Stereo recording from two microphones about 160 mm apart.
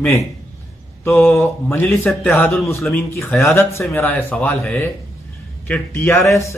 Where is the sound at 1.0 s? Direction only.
15° left (ahead or behind).